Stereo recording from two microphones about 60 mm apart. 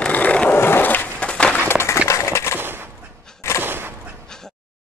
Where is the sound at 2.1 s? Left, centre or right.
Left.